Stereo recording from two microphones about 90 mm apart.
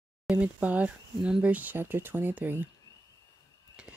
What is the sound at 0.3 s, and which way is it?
Speech, 15° right (ahead or behind).